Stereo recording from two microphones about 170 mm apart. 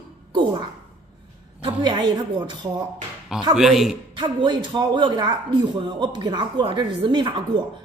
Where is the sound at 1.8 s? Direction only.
25° right (ahead or behind).